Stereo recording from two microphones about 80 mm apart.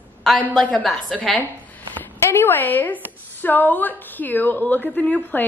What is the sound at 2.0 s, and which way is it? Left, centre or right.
A woman's voice, left.